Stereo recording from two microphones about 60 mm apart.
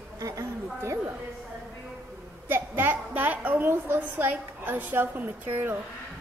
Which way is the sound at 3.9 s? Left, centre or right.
Right.